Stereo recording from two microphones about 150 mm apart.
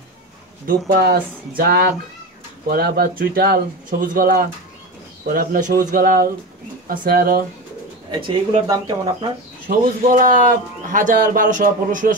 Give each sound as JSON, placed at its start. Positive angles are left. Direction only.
{"t": 0.7, "sound": "speech", "side_deg": -90}
{"t": 2.7, "sound": "speech", "side_deg": -80}
{"t": 4.0, "sound": "speech", "side_deg": -70}
{"t": 8.1, "sound": "speech", "side_deg": -30}
{"t": 9.7, "sound": "speech", "side_deg": -65}